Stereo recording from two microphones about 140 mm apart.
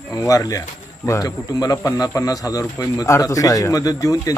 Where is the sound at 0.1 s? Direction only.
25° left (ahead or behind).